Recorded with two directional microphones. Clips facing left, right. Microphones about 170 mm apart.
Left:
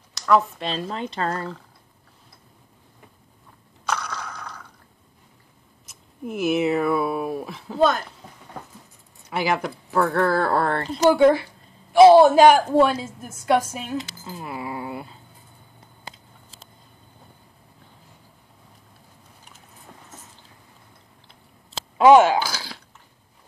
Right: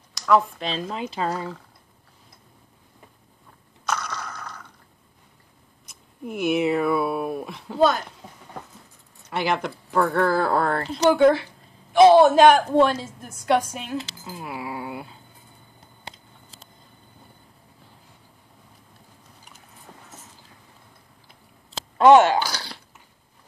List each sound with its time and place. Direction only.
0.1 s speech: centre (ahead or behind)
3.9 s crushing: 10° left (ahead or behind)
4.3 s mechanisms: 10° left (ahead or behind)
5.9 s speech: centre (ahead or behind)
9.3 s speech: 5° left (ahead or behind)
11.1 s a man's voice: 10° left (ahead or behind)
21.9 s speech: 10° left (ahead or behind)